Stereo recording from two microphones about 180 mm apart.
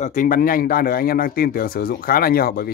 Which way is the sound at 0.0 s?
45° left (ahead or behind).